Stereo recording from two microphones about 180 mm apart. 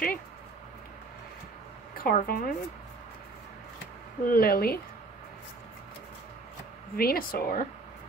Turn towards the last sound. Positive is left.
turn(degrees=55)  # may be behind; listen again after turning